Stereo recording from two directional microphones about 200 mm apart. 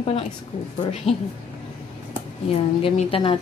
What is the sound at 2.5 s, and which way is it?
Speech, 30° left (ahead or behind).